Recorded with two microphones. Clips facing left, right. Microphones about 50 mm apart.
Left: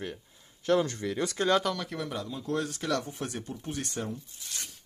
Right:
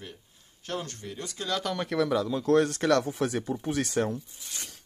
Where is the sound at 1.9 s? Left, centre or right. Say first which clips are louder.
Right 9 dB; right.